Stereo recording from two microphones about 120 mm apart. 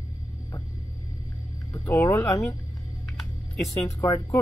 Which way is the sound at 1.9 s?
20° left (ahead or behind).